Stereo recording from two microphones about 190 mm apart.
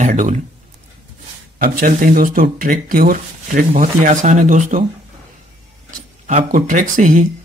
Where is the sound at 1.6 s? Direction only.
50° right (ahead or behind).